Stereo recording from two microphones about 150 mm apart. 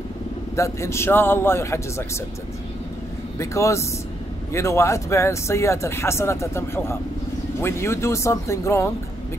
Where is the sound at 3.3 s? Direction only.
20° left (ahead or behind).